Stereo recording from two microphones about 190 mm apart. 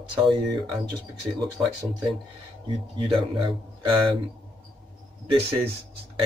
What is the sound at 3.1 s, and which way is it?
Speech, 25° right (ahead or behind).